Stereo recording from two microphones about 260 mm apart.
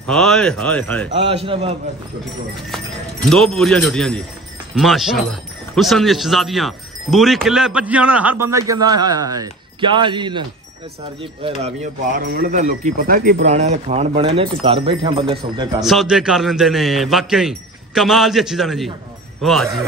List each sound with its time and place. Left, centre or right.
0.0 s speech: centre
1.1 s speech: right
3.3 s speech: centre
11.6 s speech: right
12.2 s speech: right; by 15.8 s centre
15.8 s speech: centre